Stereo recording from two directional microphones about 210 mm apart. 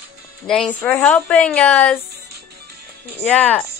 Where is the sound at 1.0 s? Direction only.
5° left (ahead or behind).